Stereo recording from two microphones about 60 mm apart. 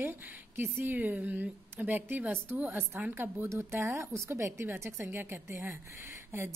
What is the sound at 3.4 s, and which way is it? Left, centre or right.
A woman's voice, right.